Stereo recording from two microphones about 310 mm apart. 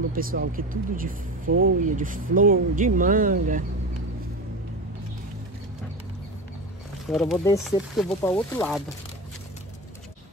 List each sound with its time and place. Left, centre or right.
0.1 s speech: right
7.1 s speech: centre